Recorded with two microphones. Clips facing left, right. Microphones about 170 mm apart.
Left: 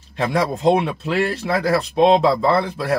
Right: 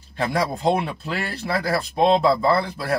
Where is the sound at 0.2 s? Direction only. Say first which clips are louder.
Left 3 dB; 70° left (ahead or behind).